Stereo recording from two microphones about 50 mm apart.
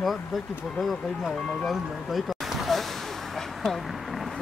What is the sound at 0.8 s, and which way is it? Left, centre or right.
Speech, centre.